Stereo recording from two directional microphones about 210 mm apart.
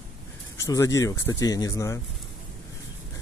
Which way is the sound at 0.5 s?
15° left (ahead or behind).